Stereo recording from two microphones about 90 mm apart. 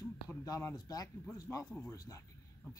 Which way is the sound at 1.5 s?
25° left (ahead or behind).